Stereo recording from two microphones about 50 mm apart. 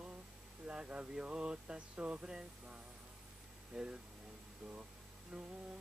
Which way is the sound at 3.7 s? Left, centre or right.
Centre.